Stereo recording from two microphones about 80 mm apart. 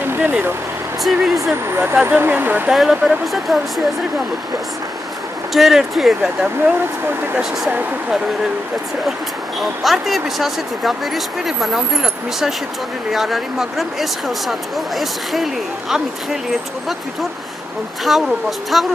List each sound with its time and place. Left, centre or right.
0.0 s vehicle: right
1.0 s speech: centre
1.5 s speech: right
2.7 s speech: centre
5.5 s speech: centre
9.6 s speech: centre
18.0 s speech: centre